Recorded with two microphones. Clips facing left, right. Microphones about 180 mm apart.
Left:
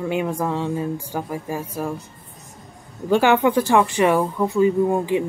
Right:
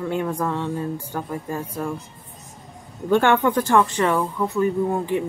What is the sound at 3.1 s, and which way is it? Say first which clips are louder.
Speech: left 1 dB; 10° left (ahead or behind).